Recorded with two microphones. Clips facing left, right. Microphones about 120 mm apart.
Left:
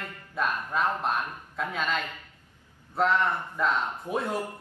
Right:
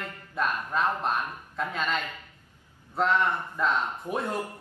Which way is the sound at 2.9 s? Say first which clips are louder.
Even; centre (ahead or behind).